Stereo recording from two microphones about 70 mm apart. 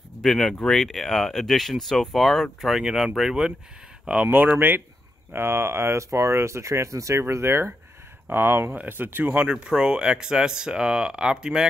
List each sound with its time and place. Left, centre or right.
0.2 s speech: centre
2.7 s speech: centre
4.3 s speech: right; by 11.6 s centre